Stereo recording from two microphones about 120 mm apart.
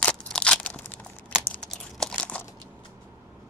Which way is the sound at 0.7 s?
15° left (ahead or behind).